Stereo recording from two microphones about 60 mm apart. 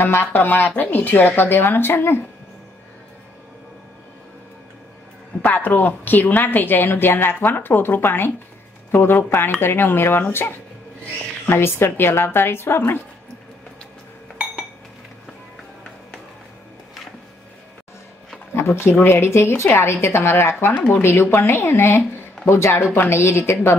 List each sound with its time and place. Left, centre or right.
0.0 s a woman's voice: left
5.4 s a woman's voice: left
18.5 s a woman's voice: left